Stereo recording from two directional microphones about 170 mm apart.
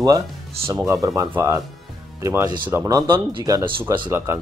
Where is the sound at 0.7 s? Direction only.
15° right (ahead or behind).